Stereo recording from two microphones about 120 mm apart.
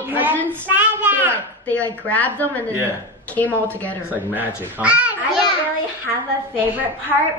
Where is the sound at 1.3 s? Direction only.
15° left (ahead or behind).